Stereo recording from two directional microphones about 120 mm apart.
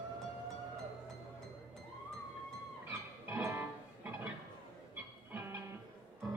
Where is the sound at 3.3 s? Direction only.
20° right (ahead or behind).